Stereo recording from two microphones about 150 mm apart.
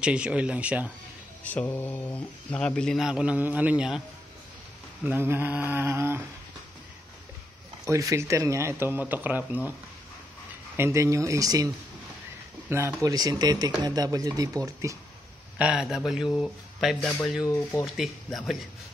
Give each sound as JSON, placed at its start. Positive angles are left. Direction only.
{"t": 0.0, "sound": "speech", "side_deg": -5}
{"t": 1.4, "sound": "speech", "side_deg": 10}
{"t": 5.0, "sound": "speech", "side_deg": -15}
{"t": 7.8, "sound": "speech", "side_deg": -20}
{"t": 10.8, "sound": "speech", "side_deg": -20}
{"t": 15.5, "sound": "speech", "side_deg": -5}
{"t": 17.5, "sound": "speech", "side_deg": 20}
{"t": 17.8, "sound": "speech", "side_deg": 0}